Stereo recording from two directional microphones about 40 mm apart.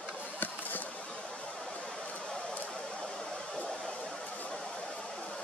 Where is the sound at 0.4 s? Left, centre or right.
Left.